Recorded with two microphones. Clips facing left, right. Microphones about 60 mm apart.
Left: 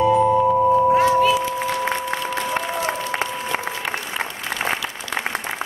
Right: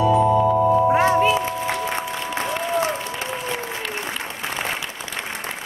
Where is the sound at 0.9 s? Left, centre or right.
Right.